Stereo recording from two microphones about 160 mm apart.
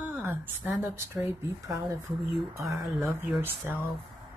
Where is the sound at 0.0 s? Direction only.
10° right (ahead or behind).